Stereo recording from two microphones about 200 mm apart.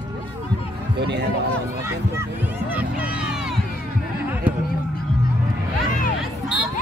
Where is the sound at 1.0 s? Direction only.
55° right (ahead or behind).